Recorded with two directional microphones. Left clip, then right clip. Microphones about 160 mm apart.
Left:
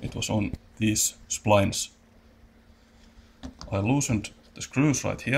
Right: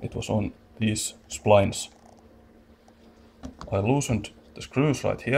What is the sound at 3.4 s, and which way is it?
A man's voice, 10° right (ahead or behind).